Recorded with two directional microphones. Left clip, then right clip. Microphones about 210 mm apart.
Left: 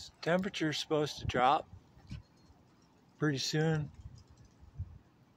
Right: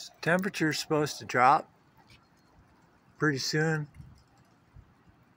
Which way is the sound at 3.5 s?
5° left (ahead or behind).